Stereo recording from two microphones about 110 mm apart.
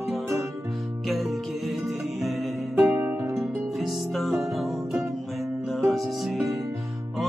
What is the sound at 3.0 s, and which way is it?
Music, 15° right (ahead or behind).